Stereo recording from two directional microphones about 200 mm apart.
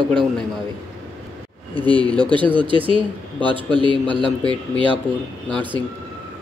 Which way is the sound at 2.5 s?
25° right (ahead or behind).